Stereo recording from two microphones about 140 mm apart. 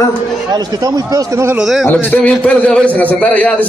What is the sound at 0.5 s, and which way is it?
Speech, 25° right (ahead or behind).